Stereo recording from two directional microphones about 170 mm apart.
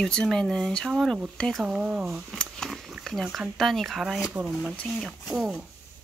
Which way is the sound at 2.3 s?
5° left (ahead or behind).